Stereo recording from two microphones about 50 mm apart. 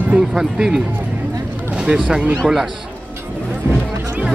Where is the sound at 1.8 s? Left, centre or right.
Centre.